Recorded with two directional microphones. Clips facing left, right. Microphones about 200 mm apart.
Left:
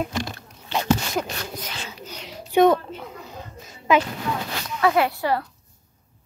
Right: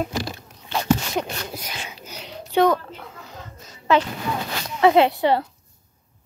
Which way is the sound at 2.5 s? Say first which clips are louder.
Left 2 dB; 20° left (ahead or behind).